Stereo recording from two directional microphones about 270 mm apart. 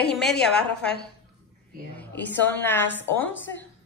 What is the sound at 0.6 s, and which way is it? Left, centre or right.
Speech, left.